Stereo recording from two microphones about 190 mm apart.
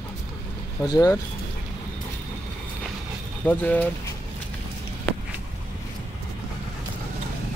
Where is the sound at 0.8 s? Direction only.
20° left (ahead or behind).